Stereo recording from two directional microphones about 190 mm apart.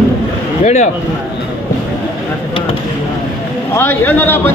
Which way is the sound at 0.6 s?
40° left (ahead or behind).